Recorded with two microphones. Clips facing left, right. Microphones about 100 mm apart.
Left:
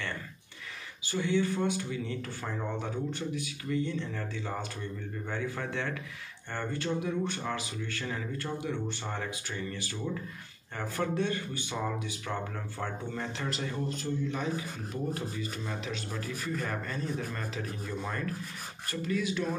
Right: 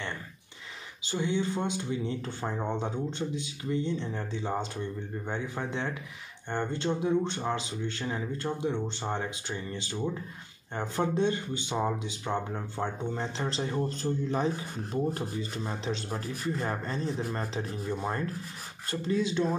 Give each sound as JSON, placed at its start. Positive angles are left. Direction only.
{"t": 1.0, "sound": "speech", "side_deg": -20}